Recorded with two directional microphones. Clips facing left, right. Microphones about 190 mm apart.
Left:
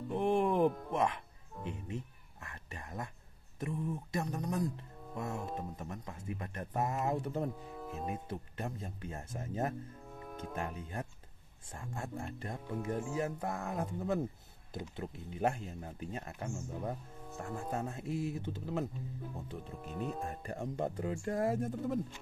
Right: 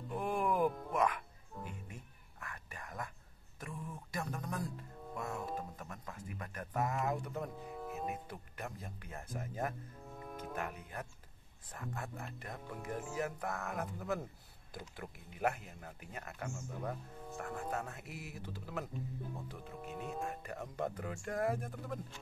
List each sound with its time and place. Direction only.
0.1 s music: 25° left (ahead or behind)
0.9 s whispering: 25° left (ahead or behind)
3.5 s speech: 25° left (ahead or behind)
19.8 s speech: 5° right (ahead or behind)
20.2 s speech: 30° left (ahead or behind)